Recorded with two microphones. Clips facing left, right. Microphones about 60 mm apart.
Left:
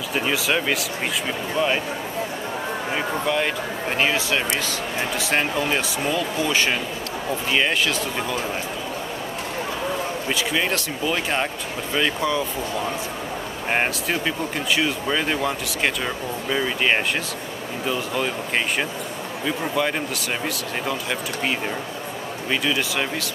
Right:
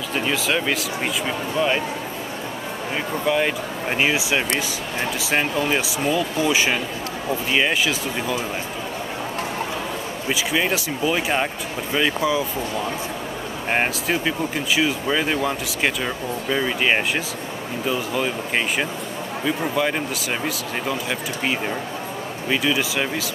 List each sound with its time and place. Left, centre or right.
0.1 s speech: centre
3.3 s speech: centre
10.2 s speech: centre
13.7 s speech: centre
19.4 s speech: centre